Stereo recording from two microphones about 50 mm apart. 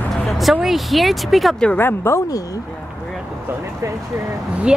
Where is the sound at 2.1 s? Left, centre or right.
Left.